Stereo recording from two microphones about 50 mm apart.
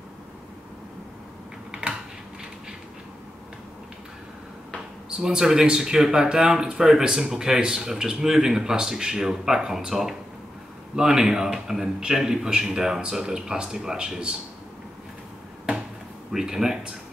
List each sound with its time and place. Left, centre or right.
1.7 s typing: centre
5.1 s speech: centre
16.3 s speech: centre